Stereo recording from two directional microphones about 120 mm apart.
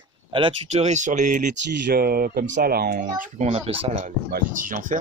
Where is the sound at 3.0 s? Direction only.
75° right (ahead or behind); by 4.0 s 55° right (ahead or behind).